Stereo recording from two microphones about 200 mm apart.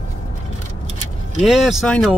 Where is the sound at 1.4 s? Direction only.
Centre (ahead or behind).